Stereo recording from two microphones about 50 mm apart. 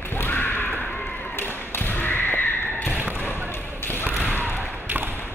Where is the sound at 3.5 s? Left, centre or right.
Left.